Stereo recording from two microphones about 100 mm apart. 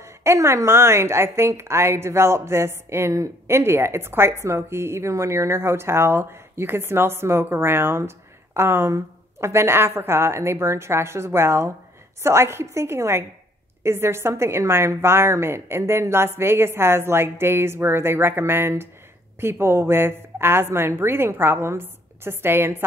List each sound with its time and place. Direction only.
0.0 s a woman's voice: 25° right (ahead or behind)